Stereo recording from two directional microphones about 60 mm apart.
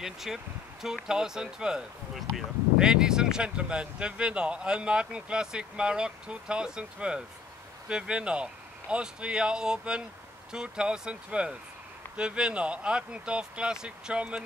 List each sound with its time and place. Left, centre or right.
0.0 s speech: centre